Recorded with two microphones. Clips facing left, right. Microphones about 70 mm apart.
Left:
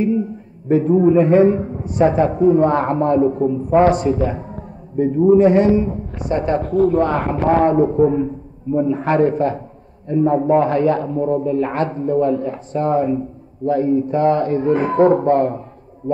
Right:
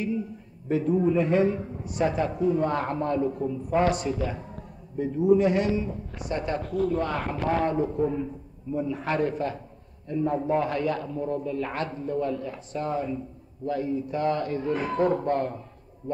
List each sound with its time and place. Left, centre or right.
0.0 s a man's voice: left